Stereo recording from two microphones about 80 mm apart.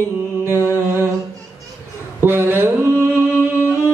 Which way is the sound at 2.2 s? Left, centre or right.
Right.